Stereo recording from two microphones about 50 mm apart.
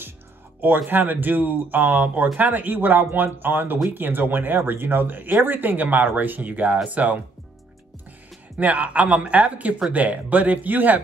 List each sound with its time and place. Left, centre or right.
0.6 s speech: right
8.5 s speech: right